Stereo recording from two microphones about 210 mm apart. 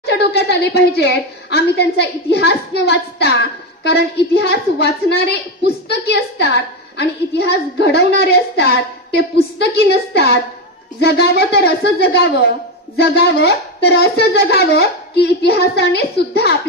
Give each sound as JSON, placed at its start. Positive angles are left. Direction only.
{"t": 0.0, "sound": "a woman's voice", "side_deg": 50}